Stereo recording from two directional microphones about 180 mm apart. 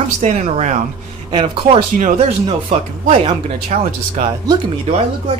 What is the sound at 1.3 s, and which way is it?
Speech, 30° right (ahead or behind).